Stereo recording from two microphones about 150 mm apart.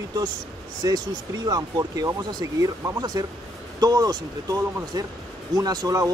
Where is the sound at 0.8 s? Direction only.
25° right (ahead or behind).